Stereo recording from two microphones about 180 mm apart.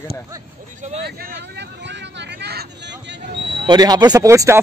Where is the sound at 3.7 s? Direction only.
20° right (ahead or behind).